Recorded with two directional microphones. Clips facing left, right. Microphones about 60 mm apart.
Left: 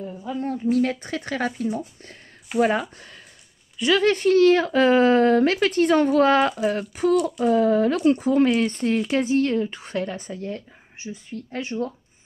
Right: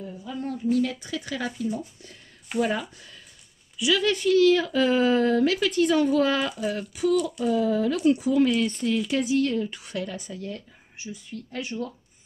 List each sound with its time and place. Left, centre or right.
0.0 s speech: left
2.6 s speech: left